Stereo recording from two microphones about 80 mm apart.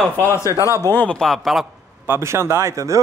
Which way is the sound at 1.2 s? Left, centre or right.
Centre.